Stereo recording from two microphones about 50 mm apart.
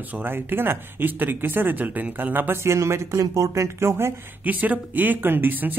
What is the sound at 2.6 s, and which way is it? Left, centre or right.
Speech, right.